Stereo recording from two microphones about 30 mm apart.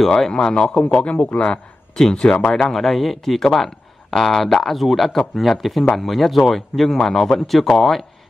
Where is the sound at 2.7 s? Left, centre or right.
Centre.